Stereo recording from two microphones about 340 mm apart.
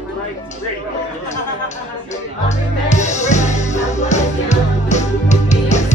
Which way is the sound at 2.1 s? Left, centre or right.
Centre.